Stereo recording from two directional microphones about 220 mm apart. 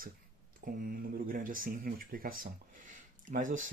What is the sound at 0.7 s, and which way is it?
Speech, 40° right (ahead or behind).